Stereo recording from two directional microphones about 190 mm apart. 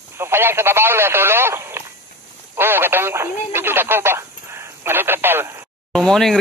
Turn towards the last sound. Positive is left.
turn(degrees=5)  # may be behind; listen again after turning